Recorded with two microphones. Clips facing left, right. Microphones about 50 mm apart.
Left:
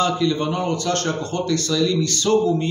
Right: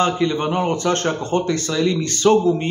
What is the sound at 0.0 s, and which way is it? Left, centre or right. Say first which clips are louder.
A man's voice: right 1 dB; right.